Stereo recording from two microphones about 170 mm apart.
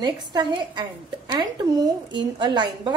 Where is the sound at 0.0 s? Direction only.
25° right (ahead or behind).